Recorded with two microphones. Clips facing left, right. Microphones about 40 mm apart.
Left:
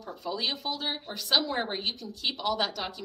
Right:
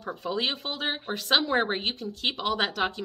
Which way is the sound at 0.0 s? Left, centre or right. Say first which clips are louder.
Right 3 dB; right.